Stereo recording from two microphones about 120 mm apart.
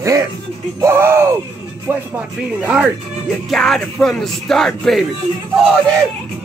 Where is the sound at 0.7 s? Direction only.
25° right (ahead or behind).